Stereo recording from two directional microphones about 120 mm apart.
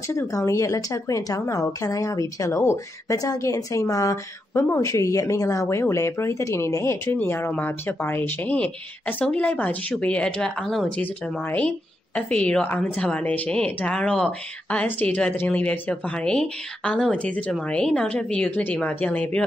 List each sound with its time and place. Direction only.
0.1 s a woman's voice: 25° left (ahead or behind); by 10.9 s centre (ahead or behind)
11.0 s a woman's voice: 15° left (ahead or behind)